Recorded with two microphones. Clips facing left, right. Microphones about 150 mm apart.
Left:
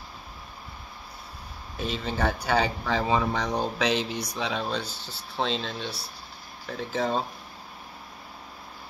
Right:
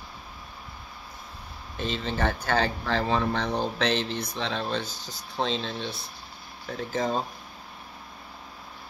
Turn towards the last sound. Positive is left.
turn(degrees=0)  # may be behind; listen again after turning